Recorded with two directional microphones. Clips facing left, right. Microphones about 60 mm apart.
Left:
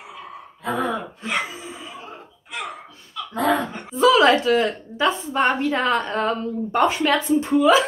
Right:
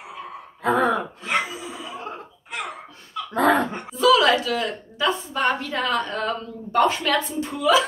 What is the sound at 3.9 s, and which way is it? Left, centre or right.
A woman's voice, left.